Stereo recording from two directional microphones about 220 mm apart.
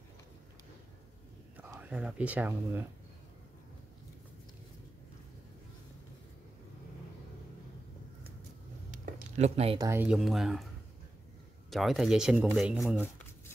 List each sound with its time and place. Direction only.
1.6 s speech: 5° right (ahead or behind)
8.9 s a sound: 35° right (ahead or behind)
9.8 s speech: 10° right (ahead or behind)
11.7 s speech: centre (ahead or behind)